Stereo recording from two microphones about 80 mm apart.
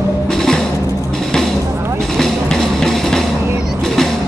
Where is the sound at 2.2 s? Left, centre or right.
Centre.